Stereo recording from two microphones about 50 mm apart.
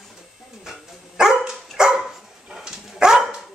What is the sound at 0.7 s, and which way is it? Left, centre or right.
Dog, centre.